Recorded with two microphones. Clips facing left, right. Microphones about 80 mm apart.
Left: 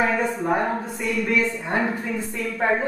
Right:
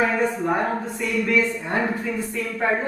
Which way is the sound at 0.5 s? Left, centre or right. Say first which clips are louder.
Even; centre.